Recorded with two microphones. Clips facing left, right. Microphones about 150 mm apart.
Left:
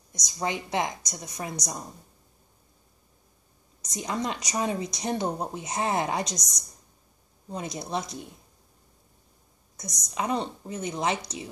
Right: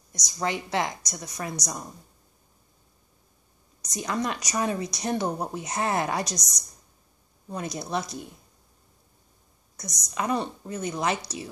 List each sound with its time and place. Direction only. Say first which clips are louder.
0.4 s speech: right 1 dB; 20° left (ahead or behind)
3.8 s speech: right 1 dB; 25° left (ahead or behind)
7.4 s speech: right 1 dB; 20° left (ahead or behind)
9.8 s speech: even; 20° left (ahead or behind)